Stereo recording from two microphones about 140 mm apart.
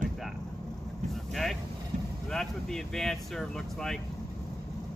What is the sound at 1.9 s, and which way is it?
Vehicle, 65° right (ahead or behind).